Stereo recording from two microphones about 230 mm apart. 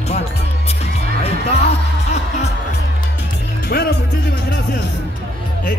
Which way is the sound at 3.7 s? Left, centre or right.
Left.